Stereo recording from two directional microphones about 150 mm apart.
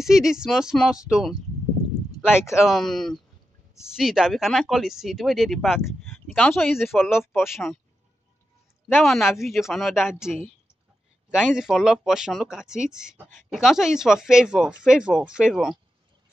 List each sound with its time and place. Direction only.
0.0 s speech: 5° right (ahead or behind)
2.5 s speech: centre (ahead or behind)
8.8 s speech: 5° left (ahead or behind)